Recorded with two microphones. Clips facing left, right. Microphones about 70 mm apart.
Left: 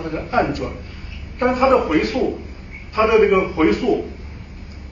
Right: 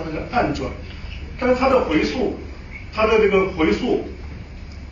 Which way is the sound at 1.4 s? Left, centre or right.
Left.